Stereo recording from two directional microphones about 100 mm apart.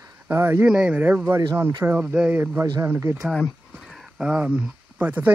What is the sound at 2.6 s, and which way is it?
Speech, 35° right (ahead or behind).